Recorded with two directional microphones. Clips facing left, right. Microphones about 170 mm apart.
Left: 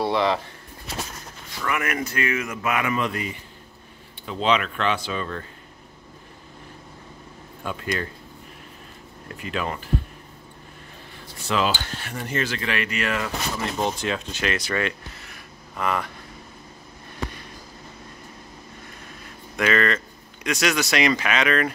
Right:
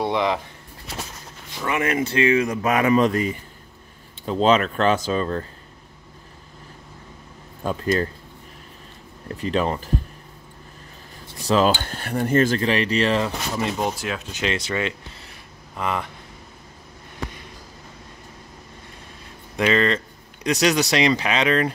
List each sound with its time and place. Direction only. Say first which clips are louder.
0.0 s speech: even; 15° right (ahead or behind)
1.6 s speech: right 4 dB; 25° right (ahead or behind)
4.3 s speech: right 5 dB; 40° right (ahead or behind)
7.6 s speech: right 6 dB; 35° right (ahead or behind)
9.4 s speech: right 6 dB; 35° right (ahead or behind)
11.4 s speech: right 5 dB; 40° right (ahead or behind)
13.6 s speech: right 2 dB; 15° right (ahead or behind)
14.3 s speech: right 1 dB; 25° right (ahead or behind)
19.5 s speech: right 2 dB; 30° right (ahead or behind)